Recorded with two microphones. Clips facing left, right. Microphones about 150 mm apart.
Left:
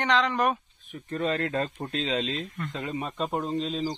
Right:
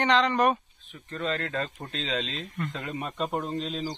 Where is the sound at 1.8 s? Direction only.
5° left (ahead or behind).